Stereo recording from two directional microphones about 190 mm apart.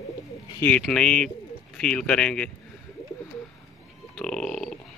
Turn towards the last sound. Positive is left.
turn(degrees=5)  # may be behind; listen again after turning